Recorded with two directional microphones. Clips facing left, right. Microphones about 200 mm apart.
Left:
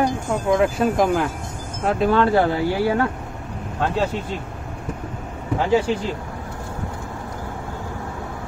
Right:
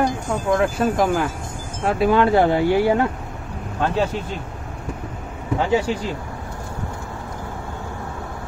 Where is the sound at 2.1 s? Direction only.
15° right (ahead or behind).